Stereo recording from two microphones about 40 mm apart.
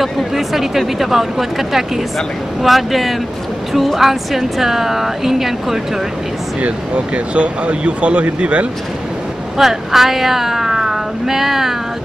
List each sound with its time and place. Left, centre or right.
0.0 s speech: centre
7.3 s speech: right
9.6 s speech: centre